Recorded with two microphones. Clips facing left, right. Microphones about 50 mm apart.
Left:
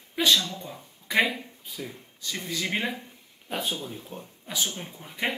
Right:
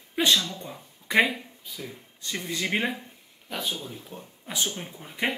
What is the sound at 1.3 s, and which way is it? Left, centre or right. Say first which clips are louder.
Speech: left 2 dB; centre.